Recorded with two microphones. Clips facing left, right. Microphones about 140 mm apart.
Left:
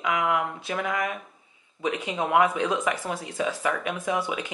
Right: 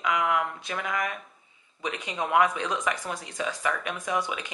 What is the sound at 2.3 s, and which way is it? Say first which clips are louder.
Speech: left 2 dB; 10° left (ahead or behind).